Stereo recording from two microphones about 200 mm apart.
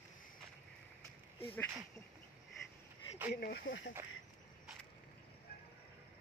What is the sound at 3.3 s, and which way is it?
Speech, 50° left (ahead or behind).